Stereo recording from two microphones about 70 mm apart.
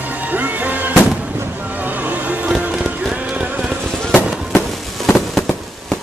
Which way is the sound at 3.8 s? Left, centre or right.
Centre.